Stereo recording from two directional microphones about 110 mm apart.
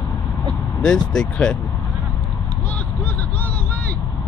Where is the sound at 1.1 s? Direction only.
5° left (ahead or behind).